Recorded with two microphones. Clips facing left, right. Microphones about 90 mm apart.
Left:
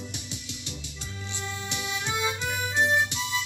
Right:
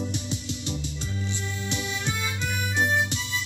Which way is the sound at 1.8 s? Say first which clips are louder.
Left 4 dB; 20° left (ahead or behind).